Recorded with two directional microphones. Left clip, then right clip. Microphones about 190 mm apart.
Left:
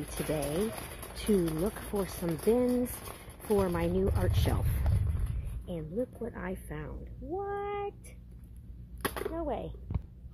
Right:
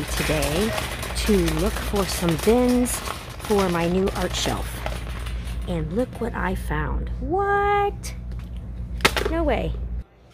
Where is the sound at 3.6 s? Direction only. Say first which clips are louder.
Right 8 dB; 15° left (ahead or behind).